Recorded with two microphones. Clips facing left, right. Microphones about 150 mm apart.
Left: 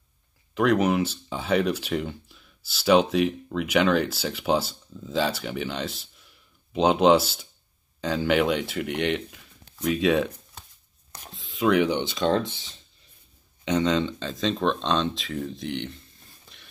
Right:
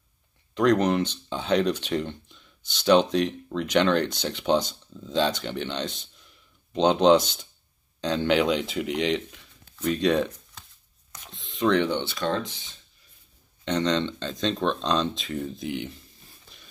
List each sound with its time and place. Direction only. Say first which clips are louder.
0.6 s speech: even; 5° left (ahead or behind)
11.1 s whispering: left 3 dB; 35° left (ahead or behind)
11.3 s speech: left 1 dB; 5° left (ahead or behind)
13.7 s speech: left 1 dB; 10° left (ahead or behind)
16.5 s a sound: even; centre (ahead or behind)